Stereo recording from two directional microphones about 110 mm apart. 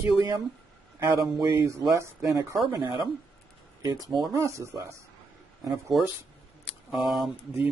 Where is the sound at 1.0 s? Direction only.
30° right (ahead or behind).